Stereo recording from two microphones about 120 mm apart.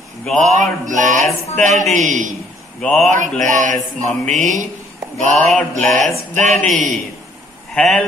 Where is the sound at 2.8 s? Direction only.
5° left (ahead or behind).